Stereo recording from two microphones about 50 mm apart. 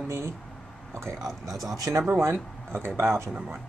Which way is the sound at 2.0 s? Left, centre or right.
Right.